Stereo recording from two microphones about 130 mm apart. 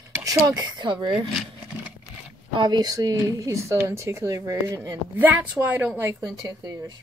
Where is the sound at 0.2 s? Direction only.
30° right (ahead or behind).